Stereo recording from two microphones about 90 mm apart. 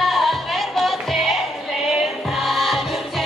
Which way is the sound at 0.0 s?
Centre (ahead or behind).